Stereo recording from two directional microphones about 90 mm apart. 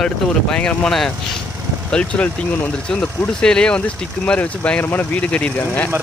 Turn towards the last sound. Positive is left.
turn(degrees=15)  # may be behind; listen again after turning